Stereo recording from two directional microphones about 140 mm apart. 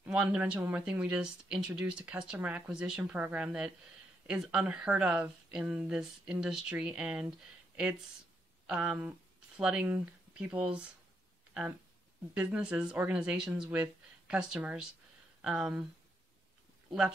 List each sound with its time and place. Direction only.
0.0 s speech: 10° right (ahead or behind)
12.4 s speech: 10° right (ahead or behind)